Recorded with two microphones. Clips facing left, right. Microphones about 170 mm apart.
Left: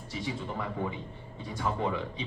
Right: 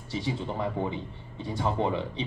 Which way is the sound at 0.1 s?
30° right (ahead or behind).